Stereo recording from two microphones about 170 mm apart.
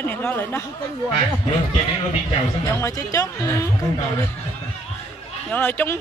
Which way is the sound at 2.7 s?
20° left (ahead or behind).